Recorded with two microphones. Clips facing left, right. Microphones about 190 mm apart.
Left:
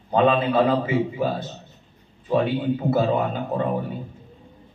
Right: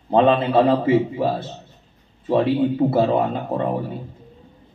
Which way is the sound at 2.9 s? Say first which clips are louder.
Right 2 dB; 30° right (ahead or behind).